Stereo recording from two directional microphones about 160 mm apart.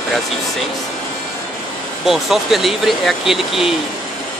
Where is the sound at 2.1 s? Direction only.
Centre (ahead or behind).